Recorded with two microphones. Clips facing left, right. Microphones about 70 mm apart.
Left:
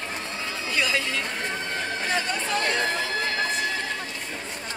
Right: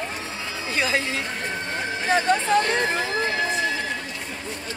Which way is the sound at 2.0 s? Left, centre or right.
Right.